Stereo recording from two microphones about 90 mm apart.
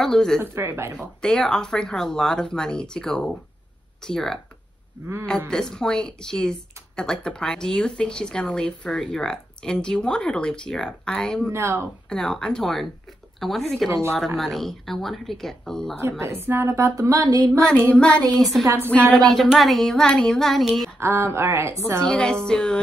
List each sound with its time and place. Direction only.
0.0 s speech: 5° left (ahead or behind)
0.4 s speech: 30° right (ahead or behind)
0.9 s speech: 5° left (ahead or behind)
5.5 s speech: 5° left (ahead or behind)
11.5 s speech: 30° right (ahead or behind)
12.1 s speech: 10° left (ahead or behind)
13.8 s speech: 30° right (ahead or behind)
14.1 s speech: centre (ahead or behind)
16.0 s a woman's voice: 30° right (ahead or behind)
17.6 s speech: 15° left (ahead or behind)
21.0 s a woman's voice: 30° right (ahead or behind)
22.0 s speech: 10° left (ahead or behind)